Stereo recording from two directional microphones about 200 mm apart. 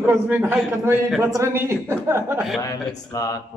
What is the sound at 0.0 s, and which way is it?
A woman's voice, 10° right (ahead or behind).